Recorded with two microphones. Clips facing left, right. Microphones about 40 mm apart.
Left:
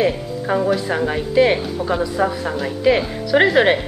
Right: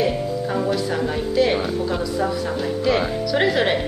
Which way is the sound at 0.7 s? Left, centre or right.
Left.